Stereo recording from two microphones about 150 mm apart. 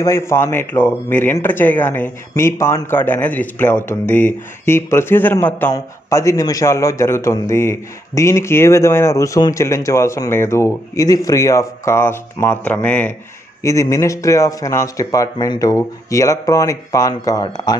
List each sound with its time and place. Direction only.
0.0 s a man's voice: 20° left (ahead or behind)